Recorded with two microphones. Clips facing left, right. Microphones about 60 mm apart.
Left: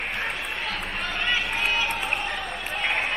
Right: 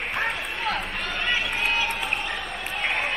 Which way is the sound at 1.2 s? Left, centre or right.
Centre.